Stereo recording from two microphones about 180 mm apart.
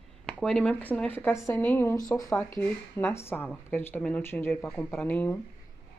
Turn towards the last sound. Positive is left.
turn(degrees=10)  # may be behind; listen again after turning